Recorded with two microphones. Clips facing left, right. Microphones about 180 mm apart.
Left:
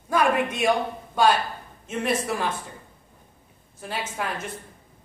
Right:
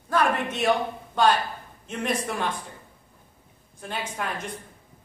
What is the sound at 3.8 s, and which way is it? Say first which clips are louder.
Speech: left 1 dB; 5° left (ahead or behind).